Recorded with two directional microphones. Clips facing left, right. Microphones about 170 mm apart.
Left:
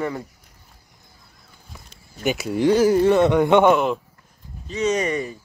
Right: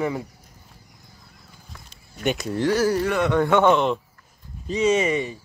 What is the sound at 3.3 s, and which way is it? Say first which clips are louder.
Speech: left 3 dB; 15° left (ahead or behind).